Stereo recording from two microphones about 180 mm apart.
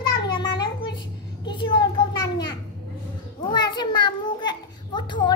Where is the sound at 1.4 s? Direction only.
25° left (ahead or behind).